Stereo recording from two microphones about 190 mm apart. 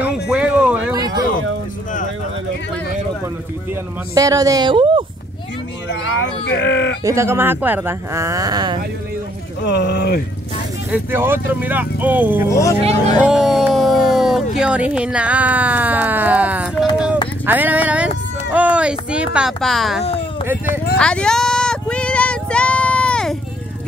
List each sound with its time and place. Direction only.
0.0 s a sound: 5° right (ahead or behind)
0.9 s a sound: 20° right (ahead or behind)
4.1 s speech: 20° right (ahead or behind)
7.0 s speech: 15° right (ahead or behind)
9.6 s speech: 65° left (ahead or behind)
10.9 s speech: 10° right (ahead or behind)
12.4 s speech: 15° left (ahead or behind)
13.2 s speech: 5° right (ahead or behind)
16.9 s a sound: 5° right (ahead or behind)
17.5 s speech: 10° right (ahead or behind)
20.1 s a sound: 30° left (ahead or behind)
21.0 s female singing: 5° left (ahead or behind)